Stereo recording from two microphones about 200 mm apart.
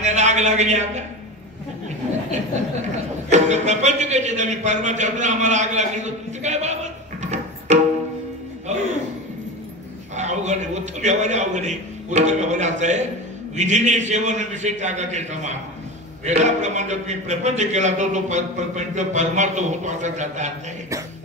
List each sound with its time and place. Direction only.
0.0 s a man's voice: 35° right (ahead or behind)
3.3 s a man's voice: 35° right (ahead or behind)
7.7 s music: 35° right (ahead or behind)
10.1 s a man's voice: 35° right (ahead or behind)